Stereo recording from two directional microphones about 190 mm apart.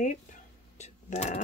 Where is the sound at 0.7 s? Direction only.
35° left (ahead or behind).